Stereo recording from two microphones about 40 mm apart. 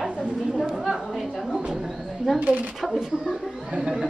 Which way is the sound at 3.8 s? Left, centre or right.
Centre.